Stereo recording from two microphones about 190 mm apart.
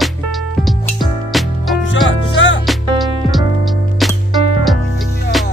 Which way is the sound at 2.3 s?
80° left.